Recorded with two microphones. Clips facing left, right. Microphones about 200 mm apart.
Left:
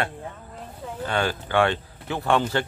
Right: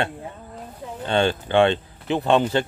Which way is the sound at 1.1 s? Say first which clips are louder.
Right 5 dB; 25° right (ahead or behind).